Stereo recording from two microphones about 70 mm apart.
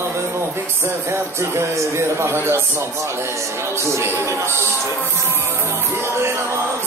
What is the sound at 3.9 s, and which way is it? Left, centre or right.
Speech, right.